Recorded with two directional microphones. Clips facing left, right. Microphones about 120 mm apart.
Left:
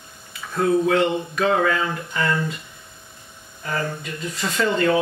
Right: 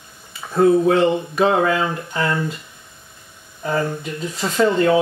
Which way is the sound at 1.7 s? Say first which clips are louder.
Right 3 dB; 20° right (ahead or behind).